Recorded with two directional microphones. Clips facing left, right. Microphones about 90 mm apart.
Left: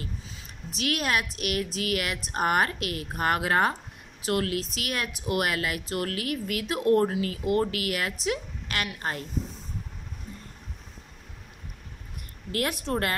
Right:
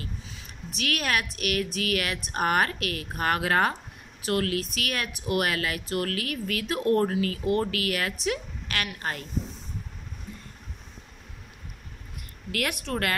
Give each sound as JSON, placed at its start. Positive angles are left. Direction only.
{"t": 0.0, "sound": "speech", "side_deg": 30}
{"t": 12.4, "sound": "a woman's voice", "side_deg": 30}